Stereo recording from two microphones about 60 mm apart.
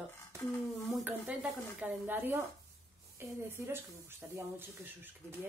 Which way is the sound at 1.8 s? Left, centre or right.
Right.